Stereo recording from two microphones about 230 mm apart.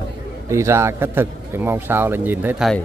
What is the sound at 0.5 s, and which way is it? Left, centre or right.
A man's voice, centre.